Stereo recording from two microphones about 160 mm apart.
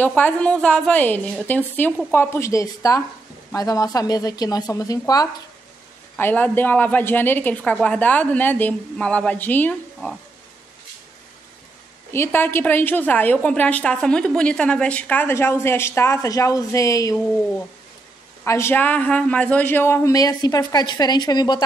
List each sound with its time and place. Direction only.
0.0 s a woman's voice: 10° left (ahead or behind)
6.1 s a woman's voice: 10° left (ahead or behind)
12.1 s a woman's voice: 15° left (ahead or behind)
18.4 s a woman's voice: 15° left (ahead or behind)